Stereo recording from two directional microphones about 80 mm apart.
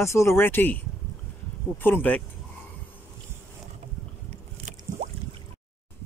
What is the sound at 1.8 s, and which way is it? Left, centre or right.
Speech, left.